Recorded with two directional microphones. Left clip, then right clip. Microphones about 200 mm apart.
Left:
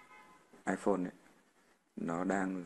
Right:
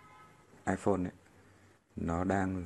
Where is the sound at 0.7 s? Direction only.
5° right (ahead or behind).